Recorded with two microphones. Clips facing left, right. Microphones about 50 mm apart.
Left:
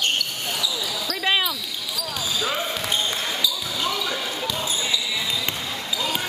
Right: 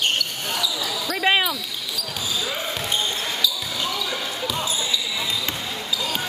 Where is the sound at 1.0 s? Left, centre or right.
Centre.